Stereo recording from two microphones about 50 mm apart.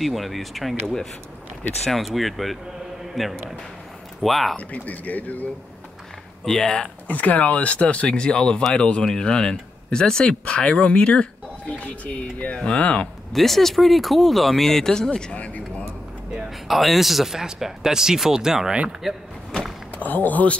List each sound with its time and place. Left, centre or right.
0.0 s speech: centre
4.6 s speech: left
6.4 s speech: centre
7.1 s speech: left
11.8 s speech: left
13.3 s speech: centre
15.3 s speech: left
16.4 s speech: centre
20.0 s speech: left